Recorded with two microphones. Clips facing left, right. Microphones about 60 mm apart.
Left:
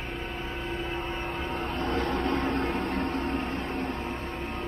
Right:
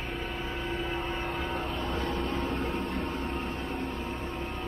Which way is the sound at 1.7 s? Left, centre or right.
Left.